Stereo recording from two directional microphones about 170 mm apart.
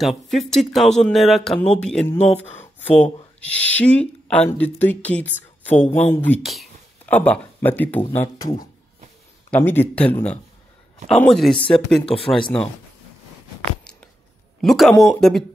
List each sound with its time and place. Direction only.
0.0 s speech: centre (ahead or behind)
2.1 s speech: 40° left (ahead or behind)
3.0 s speech: 10° left (ahead or behind)
6.4 s speech: centre (ahead or behind)
14.6 s speech: centre (ahead or behind)